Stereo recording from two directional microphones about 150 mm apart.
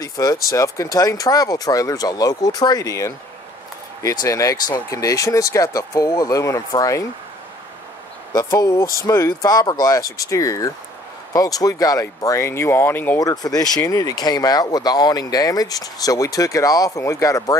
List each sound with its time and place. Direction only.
0.0 s speech: 25° left (ahead or behind)
8.3 s speech: 25° left (ahead or behind)
13.2 s speech: 25° left (ahead or behind)